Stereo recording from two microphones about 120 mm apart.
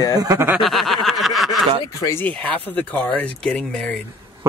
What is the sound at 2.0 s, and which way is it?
Speech, 25° left (ahead or behind).